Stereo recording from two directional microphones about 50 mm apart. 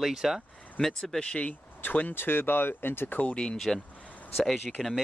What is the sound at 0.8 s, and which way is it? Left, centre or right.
Speech, centre.